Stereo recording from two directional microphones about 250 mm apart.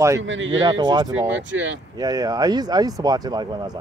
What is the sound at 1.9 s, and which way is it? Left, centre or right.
Speech, centre.